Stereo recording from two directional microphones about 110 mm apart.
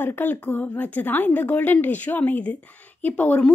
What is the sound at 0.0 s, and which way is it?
A woman's voice, 20° left (ahead or behind).